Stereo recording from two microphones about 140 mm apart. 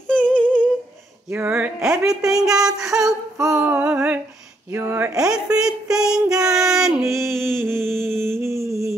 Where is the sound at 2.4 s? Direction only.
5° right (ahead or behind).